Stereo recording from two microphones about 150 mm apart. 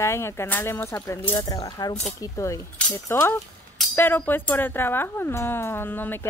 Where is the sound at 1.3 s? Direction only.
25° left (ahead or behind).